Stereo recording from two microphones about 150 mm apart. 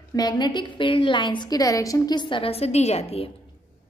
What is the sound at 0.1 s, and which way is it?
A woman's voice, 25° left (ahead or behind).